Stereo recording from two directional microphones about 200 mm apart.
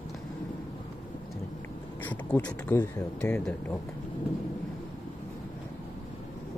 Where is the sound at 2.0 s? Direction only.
10° left (ahead or behind).